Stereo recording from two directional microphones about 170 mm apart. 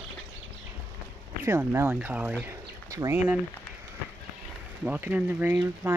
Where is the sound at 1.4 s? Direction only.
15° right (ahead or behind).